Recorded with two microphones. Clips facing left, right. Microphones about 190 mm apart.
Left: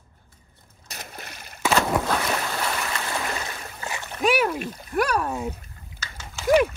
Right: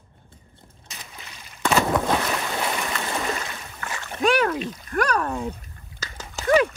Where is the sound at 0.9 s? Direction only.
55° left (ahead or behind).